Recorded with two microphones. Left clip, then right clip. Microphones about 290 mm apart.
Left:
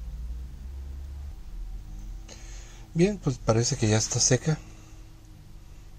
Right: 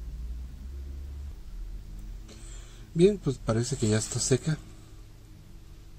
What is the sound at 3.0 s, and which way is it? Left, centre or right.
Speech, left.